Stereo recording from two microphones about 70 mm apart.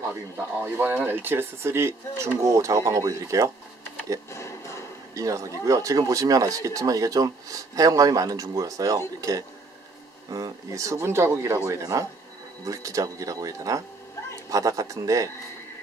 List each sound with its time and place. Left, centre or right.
0.6 s speech: right
4.3 s a sound: left
5.1 s speech: right